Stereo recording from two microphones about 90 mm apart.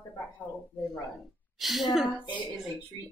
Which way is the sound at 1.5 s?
Centre (ahead or behind).